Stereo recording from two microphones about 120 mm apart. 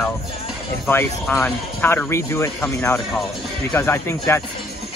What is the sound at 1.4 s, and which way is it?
A man's voice, 15° left (ahead or behind).